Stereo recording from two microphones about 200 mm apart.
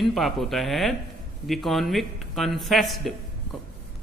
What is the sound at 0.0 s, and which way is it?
Speech, centre (ahead or behind).